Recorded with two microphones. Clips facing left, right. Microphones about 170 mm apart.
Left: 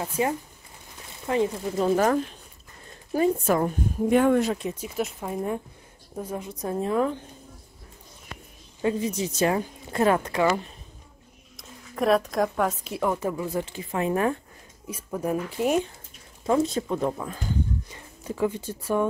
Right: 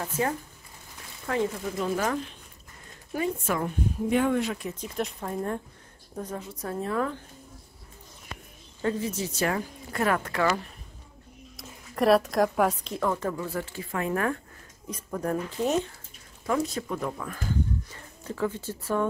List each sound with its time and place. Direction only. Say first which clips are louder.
0.0 s a woman's voice: left 2 dB; 15° left (ahead or behind)
1.8 s a woman's voice: left 7 dB; 35° left (ahead or behind)
4.7 s a woman's voice: left 2 dB; 5° left (ahead or behind)
8.8 s speech: left 3 dB; 15° left (ahead or behind)
11.5 s a woman's voice: even; centre (ahead or behind); by 14.4 s 20° left (ahead or behind)
14.9 s a woman's voice: left 2 dB; 10° left (ahead or behind)
16.4 s speech: left 5 dB; 25° left (ahead or behind)
17.8 s speech: left 3 dB; 15° left (ahead or behind)